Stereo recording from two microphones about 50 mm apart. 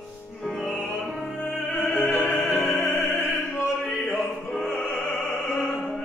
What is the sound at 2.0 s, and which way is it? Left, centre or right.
Music, left.